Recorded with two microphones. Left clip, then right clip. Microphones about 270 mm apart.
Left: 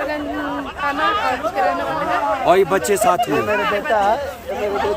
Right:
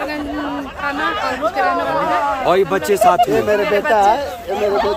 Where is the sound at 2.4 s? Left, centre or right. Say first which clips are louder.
Left 3 dB; centre.